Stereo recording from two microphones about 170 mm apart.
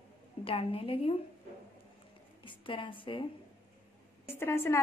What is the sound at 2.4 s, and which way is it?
Speech, 30° left (ahead or behind).